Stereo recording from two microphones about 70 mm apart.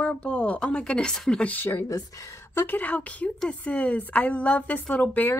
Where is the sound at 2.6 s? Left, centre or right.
Left.